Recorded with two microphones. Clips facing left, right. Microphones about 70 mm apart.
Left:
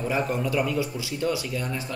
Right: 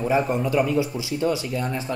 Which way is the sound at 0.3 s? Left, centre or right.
Centre.